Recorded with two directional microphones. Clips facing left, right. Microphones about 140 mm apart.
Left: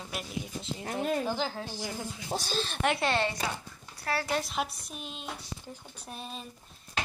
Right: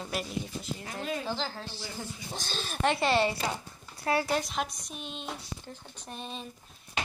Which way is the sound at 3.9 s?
20° right (ahead or behind).